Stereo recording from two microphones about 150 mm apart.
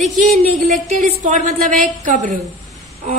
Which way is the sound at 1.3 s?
55° right (ahead or behind).